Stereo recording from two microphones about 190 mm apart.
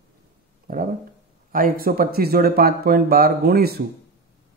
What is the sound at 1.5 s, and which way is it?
Speech, 50° right (ahead or behind).